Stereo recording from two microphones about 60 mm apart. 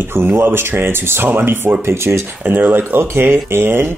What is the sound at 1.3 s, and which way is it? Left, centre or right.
Speech, right.